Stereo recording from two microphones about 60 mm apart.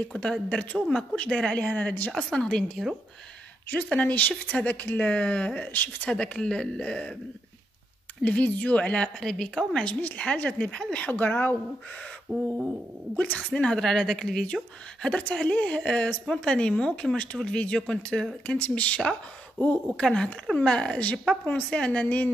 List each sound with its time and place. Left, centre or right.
0.1 s a woman's voice: centre
1.1 s a woman's voice: left
2.1 s a woman's voice: centre
3.7 s a woman's voice: left
8.2 s a woman's voice: left
9.2 s a woman's voice: centre
9.8 s a woman's voice: left
12.3 s crow: centre
13.4 s a woman's voice: centre
13.7 s a woman's voice: centre